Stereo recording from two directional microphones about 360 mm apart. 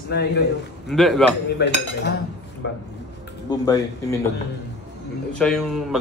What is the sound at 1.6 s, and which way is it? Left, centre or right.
Speech, left.